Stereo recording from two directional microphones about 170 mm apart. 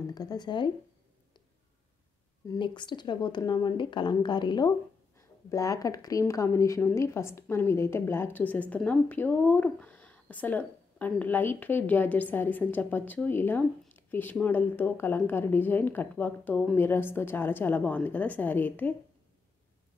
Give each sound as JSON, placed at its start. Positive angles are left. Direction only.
{"t": 0.0, "sound": "speech", "side_deg": 20}
{"t": 2.4, "sound": "speech", "side_deg": 25}